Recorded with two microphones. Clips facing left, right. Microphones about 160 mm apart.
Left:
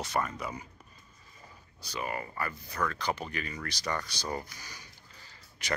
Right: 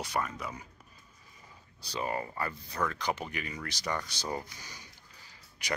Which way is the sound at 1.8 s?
30° right (ahead or behind).